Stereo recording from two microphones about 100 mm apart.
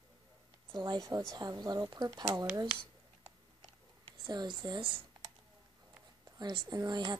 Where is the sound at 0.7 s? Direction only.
40° right (ahead or behind).